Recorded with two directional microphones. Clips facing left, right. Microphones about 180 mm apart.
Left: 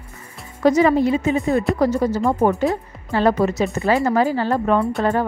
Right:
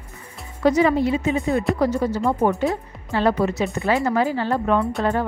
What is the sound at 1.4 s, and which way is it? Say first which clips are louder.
Speech: left 2 dB; centre (ahead or behind).